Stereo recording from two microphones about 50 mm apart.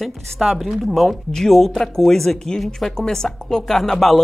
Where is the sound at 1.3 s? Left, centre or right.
Centre.